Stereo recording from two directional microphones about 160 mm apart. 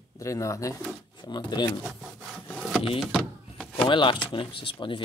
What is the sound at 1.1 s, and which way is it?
Drawer open or close, 25° left (ahead or behind).